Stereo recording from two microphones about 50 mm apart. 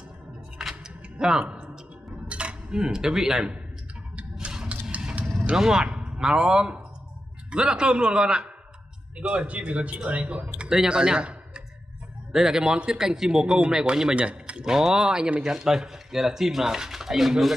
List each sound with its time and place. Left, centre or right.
0.6 s music: centre
1.1 s tick-tock: centre
1.4 s music: right
2.2 s dishes: right
4.9 s mechanisms: right
5.6 s speech: centre
9.3 s speech: right
10.7 s speech: centre
14.6 s speech: centre